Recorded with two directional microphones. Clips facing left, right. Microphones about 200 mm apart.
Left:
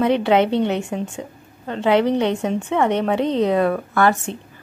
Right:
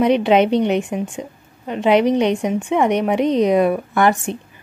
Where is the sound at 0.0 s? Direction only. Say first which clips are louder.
Right 2 dB; 15° right (ahead or behind).